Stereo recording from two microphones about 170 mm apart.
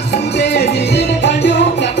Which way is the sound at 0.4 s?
85° left.